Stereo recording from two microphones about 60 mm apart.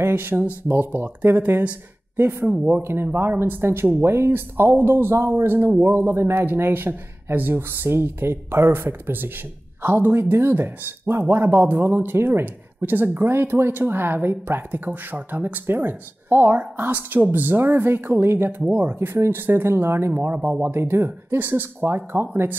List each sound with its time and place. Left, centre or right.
0.0 s speech: right
18.7 s speech: right
18.9 s speech: right